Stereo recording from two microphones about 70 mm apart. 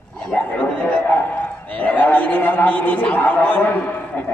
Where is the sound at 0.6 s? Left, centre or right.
Left.